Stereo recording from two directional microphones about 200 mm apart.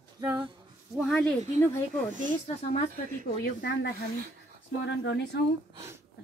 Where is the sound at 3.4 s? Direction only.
55° left (ahead or behind).